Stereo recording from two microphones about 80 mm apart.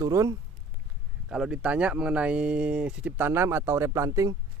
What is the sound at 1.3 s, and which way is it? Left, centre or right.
Speech, centre.